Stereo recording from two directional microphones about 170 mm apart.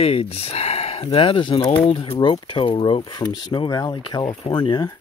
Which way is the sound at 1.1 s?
35° left (ahead or behind).